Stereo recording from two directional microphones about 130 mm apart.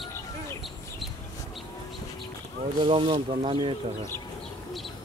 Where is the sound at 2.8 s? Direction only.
40° right (ahead or behind).